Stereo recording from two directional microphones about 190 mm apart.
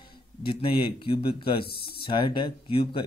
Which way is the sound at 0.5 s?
30° left (ahead or behind).